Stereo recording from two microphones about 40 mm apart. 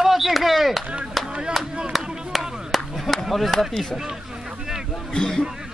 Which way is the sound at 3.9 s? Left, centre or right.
Centre.